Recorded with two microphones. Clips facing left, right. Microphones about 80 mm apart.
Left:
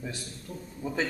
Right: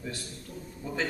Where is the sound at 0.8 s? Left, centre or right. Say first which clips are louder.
Left 3 dB; centre.